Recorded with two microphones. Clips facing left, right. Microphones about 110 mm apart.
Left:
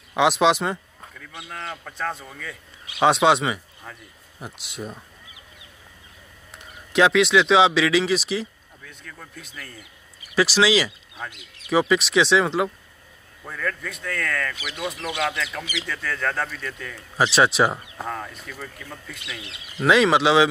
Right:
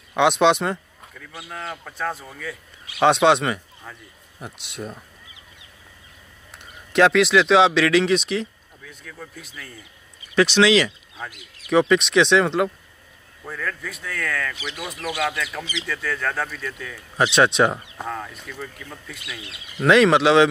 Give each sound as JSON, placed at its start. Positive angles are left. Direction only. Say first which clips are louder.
{"t": 0.1, "sound": "speech", "louder": "right 1 dB", "side_deg": 0}
{"t": 6.5, "sound": "speech", "louder": "right 1 dB", "side_deg": 0}
{"t": 11.2, "sound": "speech", "louder": "even", "side_deg": 25}
{"t": 11.7, "sound": "speech", "louder": "right 2 dB", "side_deg": 0}
{"t": 14.5, "sound": "speech", "louder": "right 1 dB", "side_deg": -25}
{"t": 15.0, "sound": "speech", "louder": "right 4 dB", "side_deg": 25}
{"t": 15.9, "sound": "speech", "louder": "right 1 dB", "side_deg": 0}